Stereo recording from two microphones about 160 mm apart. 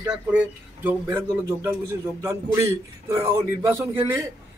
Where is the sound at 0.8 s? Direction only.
10° right (ahead or behind).